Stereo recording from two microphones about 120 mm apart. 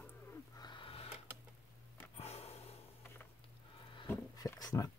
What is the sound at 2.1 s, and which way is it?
Snort, 60° left (ahead or behind).